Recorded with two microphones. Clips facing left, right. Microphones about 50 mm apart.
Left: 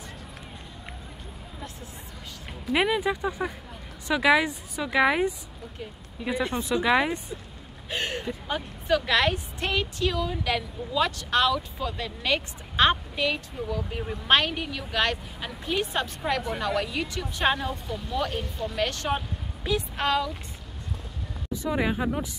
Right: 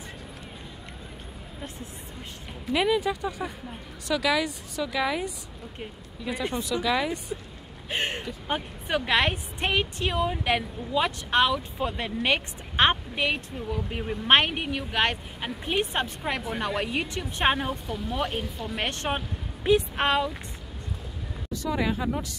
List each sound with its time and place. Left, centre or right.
2.7 s speech: centre
7.9 s a sound: right
8.5 s a woman's voice: right
18.4 s speech: centre
18.8 s a woman's voice: right
21.5 s speech: centre